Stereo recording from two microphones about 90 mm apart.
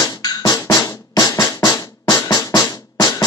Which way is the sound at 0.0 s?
45° left (ahead or behind).